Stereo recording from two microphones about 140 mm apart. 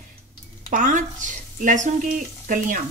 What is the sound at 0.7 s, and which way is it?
Speech, 65° right (ahead or behind).